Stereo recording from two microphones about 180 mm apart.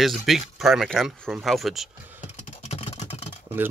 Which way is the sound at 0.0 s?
Centre (ahead or behind).